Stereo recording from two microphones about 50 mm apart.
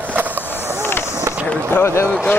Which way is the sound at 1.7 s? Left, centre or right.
Left.